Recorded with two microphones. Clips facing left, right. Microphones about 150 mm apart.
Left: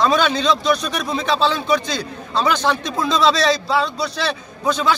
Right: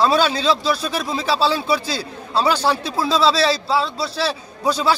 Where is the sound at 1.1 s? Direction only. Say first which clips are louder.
Left 1 dB; 5° right (ahead or behind).